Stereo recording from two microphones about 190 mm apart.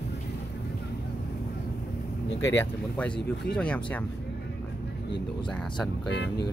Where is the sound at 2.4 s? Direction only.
10° left (ahead or behind).